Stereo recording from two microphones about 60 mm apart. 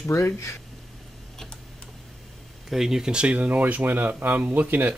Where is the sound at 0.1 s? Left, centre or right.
Left.